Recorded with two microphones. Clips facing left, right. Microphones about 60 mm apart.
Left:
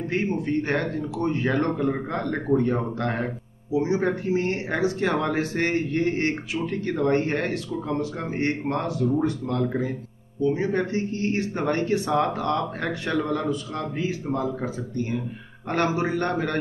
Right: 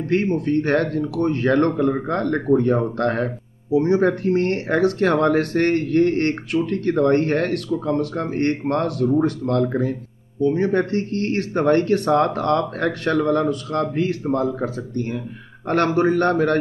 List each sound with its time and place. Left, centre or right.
0.5 s speech: right